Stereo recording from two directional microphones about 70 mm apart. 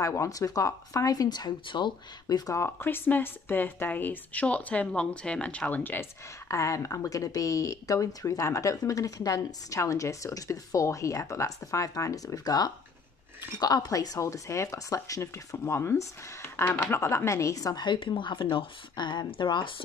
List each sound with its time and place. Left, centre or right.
0.0 s speech: left
2.6 s speech: left
6.5 s speech: left
18.9 s speech: left